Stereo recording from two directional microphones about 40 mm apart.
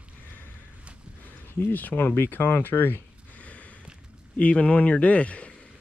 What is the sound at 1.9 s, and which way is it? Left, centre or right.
Speech, centre.